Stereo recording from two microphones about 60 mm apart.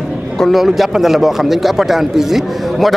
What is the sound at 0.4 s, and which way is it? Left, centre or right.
A man's voice, centre.